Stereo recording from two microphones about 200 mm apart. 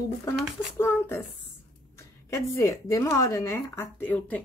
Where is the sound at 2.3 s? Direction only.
15° left (ahead or behind).